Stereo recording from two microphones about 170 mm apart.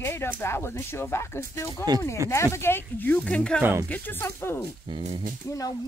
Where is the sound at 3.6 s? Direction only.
10° right (ahead or behind).